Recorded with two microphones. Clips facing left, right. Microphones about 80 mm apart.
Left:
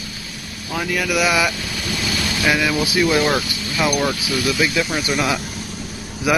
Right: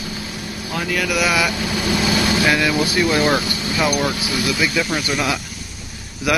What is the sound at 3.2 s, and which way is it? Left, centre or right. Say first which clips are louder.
Speech: right 1 dB; centre.